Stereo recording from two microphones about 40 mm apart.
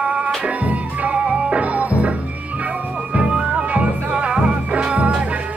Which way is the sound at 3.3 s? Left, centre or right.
Right.